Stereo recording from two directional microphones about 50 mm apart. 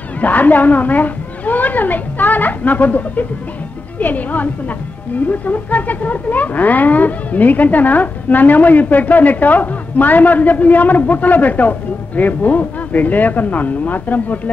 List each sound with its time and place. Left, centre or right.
0.2 s speech: left